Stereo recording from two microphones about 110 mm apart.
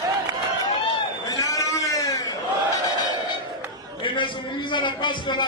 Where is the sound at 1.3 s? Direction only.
35° left (ahead or behind).